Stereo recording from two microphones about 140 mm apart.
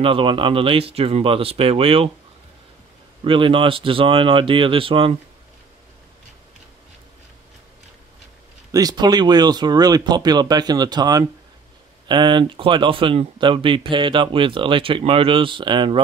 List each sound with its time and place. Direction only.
0.0 s speech: 40° right (ahead or behind)
3.3 s speech: 40° right (ahead or behind)
8.7 s speech: 30° right (ahead or behind)